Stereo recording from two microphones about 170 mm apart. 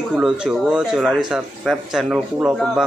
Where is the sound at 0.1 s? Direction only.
5° right (ahead or behind).